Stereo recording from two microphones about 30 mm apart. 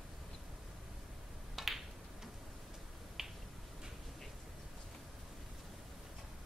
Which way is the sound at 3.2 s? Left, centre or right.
Centre.